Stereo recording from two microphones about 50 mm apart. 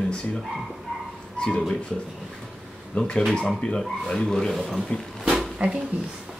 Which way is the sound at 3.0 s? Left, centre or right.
Centre.